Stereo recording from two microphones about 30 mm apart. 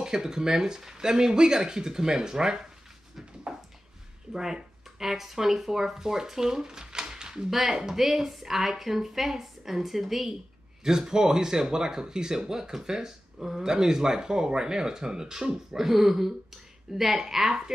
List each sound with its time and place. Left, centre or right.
0.0 s speech: right
3.5 s a sound: right
4.3 s a woman's voice: centre
10.8 s speech: right
15.8 s a woman's voice: centre